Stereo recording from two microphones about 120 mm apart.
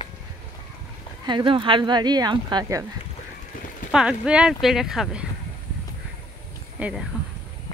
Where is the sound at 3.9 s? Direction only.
5° right (ahead or behind).